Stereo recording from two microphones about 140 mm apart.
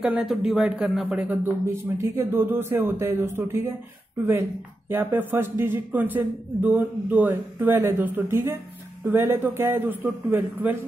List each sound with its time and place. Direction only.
0.0 s speech: 5° right (ahead or behind)
1.3 s speech: 15° right (ahead or behind)